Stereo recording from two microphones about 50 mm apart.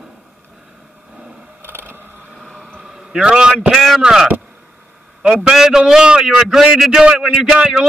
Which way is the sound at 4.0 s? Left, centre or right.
Centre.